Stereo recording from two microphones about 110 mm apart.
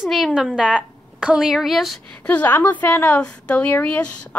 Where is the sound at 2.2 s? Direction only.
15° left (ahead or behind).